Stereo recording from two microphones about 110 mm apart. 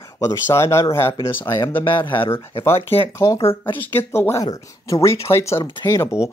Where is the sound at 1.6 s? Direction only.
50° left (ahead or behind).